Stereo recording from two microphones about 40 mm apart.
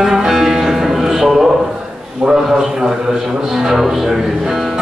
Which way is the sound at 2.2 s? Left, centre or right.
Centre.